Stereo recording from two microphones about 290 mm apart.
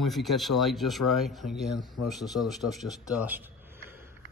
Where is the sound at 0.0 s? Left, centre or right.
Centre.